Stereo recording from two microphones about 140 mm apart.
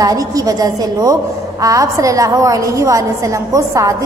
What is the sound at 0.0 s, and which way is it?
A woman's voice, 25° right (ahead or behind).